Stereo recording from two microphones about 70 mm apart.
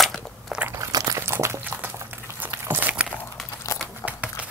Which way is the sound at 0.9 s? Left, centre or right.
Right.